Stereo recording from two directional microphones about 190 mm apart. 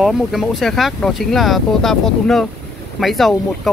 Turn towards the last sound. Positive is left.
turn(degrees=0)  # may be behind; listen again after turning